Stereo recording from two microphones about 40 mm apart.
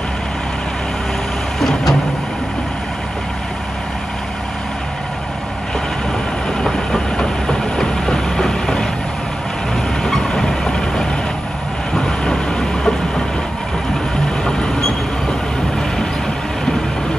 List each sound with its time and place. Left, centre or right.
1.6 s vehicle: centre
6.6 s vehicle: centre
10.0 s vehicle: centre
14.4 s train: centre